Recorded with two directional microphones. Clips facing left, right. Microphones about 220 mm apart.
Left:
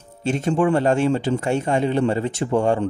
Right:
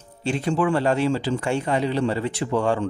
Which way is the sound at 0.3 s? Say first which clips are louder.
Left 3 dB; 45° left (ahead or behind).